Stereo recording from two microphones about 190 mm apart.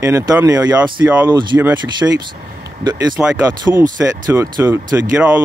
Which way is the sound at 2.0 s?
10° right (ahead or behind).